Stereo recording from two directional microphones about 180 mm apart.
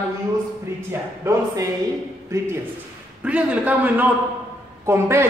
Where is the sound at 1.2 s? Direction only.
20° right (ahead or behind).